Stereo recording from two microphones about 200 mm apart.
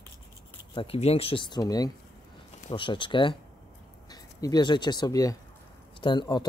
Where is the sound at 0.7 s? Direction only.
30° left (ahead or behind).